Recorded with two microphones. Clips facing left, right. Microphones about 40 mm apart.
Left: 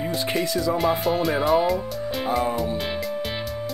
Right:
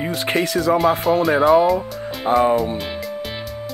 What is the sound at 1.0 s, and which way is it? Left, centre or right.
Music, centre.